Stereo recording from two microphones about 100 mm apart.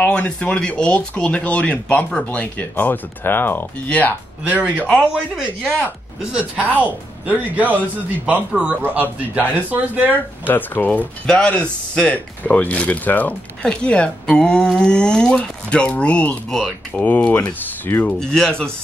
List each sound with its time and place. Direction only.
0.0 s speech: 15° left (ahead or behind)
4.5 s speech: 15° right (ahead or behind)
10.4 s speech: 20° left (ahead or behind)
18.2 s speech: 10° left (ahead or behind)